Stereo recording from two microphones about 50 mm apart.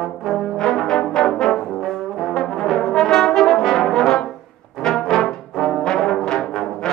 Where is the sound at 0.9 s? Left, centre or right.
Centre.